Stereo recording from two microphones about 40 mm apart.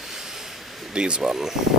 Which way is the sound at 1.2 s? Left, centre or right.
Centre.